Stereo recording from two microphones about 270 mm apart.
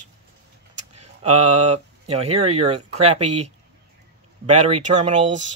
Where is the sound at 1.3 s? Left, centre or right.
Right.